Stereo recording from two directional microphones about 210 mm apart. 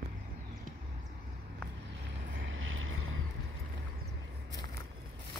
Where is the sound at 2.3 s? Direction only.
65° right (ahead or behind).